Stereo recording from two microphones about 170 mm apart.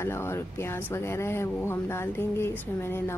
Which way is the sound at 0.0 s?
15° left (ahead or behind).